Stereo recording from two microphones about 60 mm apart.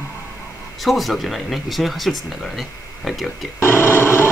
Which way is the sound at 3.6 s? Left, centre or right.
Left.